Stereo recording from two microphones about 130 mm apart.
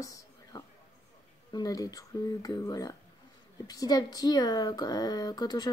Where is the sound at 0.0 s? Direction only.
25° left (ahead or behind).